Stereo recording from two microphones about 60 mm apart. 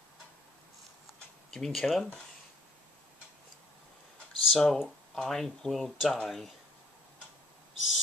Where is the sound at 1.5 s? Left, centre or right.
Centre.